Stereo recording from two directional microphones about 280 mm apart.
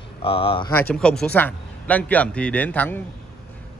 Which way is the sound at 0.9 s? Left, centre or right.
Centre.